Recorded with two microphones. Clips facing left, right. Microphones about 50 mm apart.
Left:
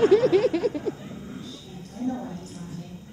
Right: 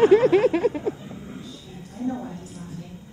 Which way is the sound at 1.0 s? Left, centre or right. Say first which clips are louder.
Even; right.